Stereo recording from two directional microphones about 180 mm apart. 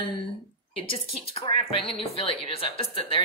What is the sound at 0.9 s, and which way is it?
Speech, 30° left (ahead or behind).